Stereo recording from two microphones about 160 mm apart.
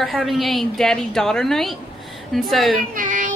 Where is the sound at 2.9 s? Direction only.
55° right (ahead or behind).